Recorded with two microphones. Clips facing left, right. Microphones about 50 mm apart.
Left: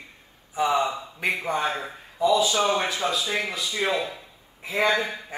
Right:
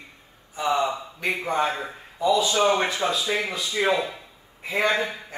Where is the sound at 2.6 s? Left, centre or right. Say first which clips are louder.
Right 2 dB; right.